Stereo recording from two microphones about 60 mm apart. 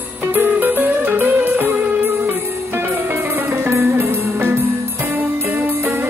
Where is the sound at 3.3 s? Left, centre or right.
Right.